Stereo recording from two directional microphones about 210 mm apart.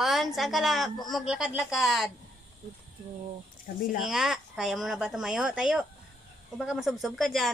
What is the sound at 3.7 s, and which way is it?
Speech, 45° left (ahead or behind).